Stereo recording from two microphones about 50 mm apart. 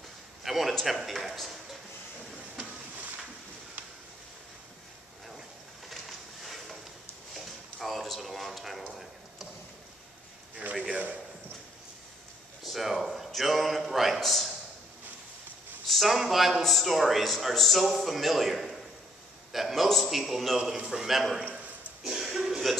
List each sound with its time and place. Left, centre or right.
0.4 s a man's voice: centre
5.9 s a sound: centre
10.6 s a man's voice: right
12.6 s a man's voice: centre
15.9 s a man's voice: centre
20.7 s a man's voice: centre
21.1 s a man's voice: centre
22.0 s a sound: centre